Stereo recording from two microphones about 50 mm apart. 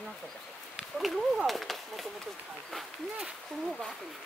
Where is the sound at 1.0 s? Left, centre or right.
Centre.